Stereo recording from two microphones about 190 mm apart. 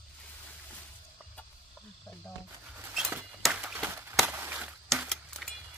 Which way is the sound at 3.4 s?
5° right (ahead or behind).